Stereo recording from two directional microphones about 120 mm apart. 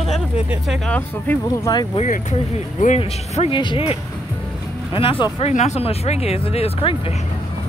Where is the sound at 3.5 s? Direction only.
40° left (ahead or behind).